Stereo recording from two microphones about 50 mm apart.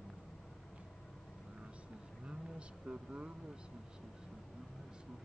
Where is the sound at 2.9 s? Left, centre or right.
Right.